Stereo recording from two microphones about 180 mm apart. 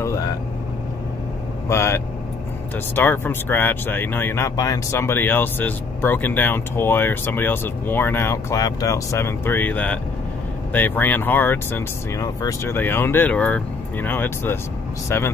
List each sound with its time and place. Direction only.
1.7 s speech: 15° left (ahead or behind)
3.0 s speech: 10° left (ahead or behind)